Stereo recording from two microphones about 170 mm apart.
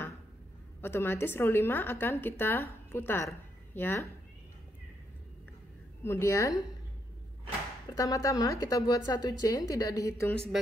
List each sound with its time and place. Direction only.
0.7 s a woman's voice: 15° left (ahead or behind)
6.0 s a woman's voice: 15° left (ahead or behind)
7.9 s a woman's voice: 20° left (ahead or behind)
10.3 s speech: 5° left (ahead or behind)